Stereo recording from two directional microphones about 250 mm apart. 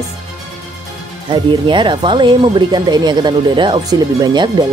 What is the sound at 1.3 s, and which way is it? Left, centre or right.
Speech, centre.